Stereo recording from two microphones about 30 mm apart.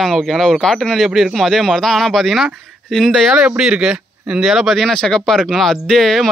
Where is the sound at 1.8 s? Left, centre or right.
Centre.